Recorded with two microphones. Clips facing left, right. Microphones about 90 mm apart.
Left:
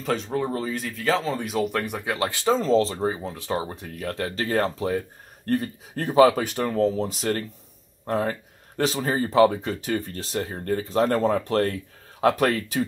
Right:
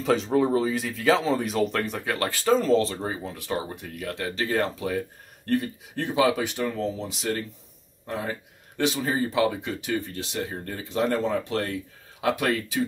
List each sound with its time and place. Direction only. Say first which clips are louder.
0.0 s speech: right 4 dB; centre (ahead or behind); by 12.8 s 45° left (ahead or behind)